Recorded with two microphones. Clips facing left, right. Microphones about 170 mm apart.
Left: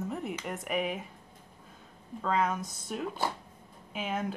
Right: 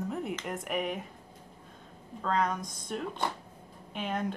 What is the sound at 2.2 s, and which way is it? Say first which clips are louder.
Speech: even; 5° left (ahead or behind).